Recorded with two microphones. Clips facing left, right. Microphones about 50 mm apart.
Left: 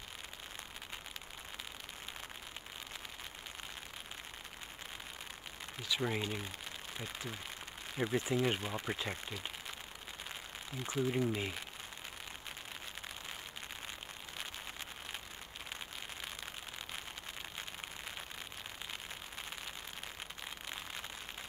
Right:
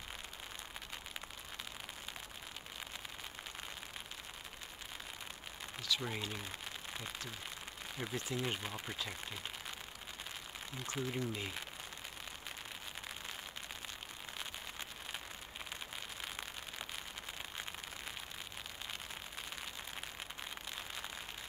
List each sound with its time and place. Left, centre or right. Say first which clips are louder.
5.8 s speech: left 3 dB; centre
8.0 s speech: left 7 dB; left
11.1 s speech: left 7 dB; centre